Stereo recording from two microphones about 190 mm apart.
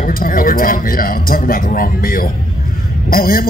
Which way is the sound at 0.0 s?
50° left (ahead or behind).